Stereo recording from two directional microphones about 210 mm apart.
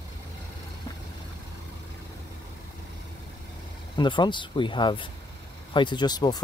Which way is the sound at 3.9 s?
20° left (ahead or behind).